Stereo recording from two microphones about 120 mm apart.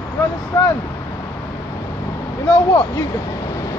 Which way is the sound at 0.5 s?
25° left (ahead or behind).